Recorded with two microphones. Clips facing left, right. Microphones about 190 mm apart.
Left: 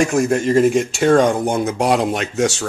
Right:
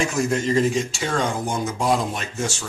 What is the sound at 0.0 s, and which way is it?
Speech, 50° left (ahead or behind).